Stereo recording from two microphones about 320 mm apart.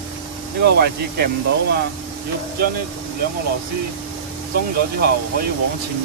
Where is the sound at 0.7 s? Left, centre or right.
Right.